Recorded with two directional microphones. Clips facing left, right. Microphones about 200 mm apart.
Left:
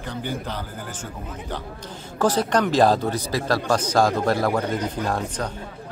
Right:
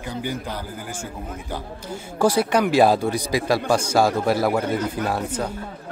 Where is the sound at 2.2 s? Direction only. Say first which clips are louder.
Right 2 dB; 10° right (ahead or behind).